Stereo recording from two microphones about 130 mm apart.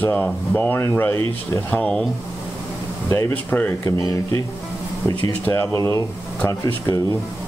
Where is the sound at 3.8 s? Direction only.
25° left (ahead or behind).